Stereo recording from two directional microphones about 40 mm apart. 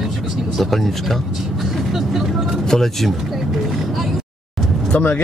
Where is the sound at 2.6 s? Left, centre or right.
Centre.